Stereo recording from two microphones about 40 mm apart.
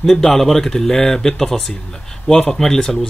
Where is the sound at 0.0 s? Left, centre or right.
Centre.